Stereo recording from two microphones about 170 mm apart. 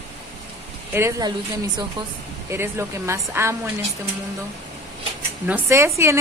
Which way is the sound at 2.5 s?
15° right (ahead or behind).